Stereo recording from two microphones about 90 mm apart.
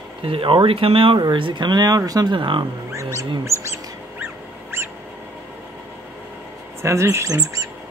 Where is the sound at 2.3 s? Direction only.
60° right (ahead or behind).